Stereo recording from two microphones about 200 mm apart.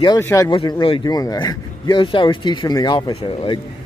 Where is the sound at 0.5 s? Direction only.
25° left (ahead or behind).